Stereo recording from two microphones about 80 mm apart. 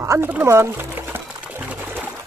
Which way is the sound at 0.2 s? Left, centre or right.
Right.